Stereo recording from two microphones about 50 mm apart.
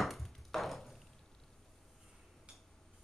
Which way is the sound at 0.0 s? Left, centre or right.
Centre.